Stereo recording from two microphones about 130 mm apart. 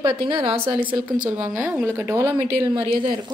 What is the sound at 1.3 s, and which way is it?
Speech, 15° right (ahead or behind).